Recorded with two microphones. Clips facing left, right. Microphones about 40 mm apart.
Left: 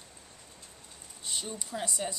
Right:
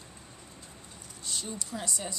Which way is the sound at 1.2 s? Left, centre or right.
Left.